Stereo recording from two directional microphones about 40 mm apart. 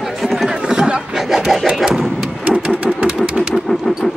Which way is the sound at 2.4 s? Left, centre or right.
Right.